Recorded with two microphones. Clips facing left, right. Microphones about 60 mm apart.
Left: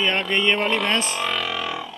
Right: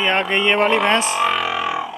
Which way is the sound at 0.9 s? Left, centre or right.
Centre.